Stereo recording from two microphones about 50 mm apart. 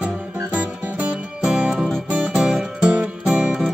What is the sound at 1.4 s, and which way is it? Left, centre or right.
Music, centre.